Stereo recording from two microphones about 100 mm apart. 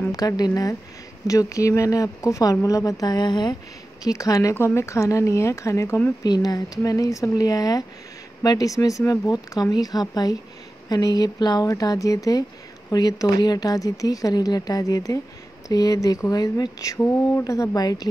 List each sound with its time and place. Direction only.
0.1 s speech: 40° left (ahead or behind)
4.0 s speech: 35° left (ahead or behind)
6.2 s speech: 40° left (ahead or behind)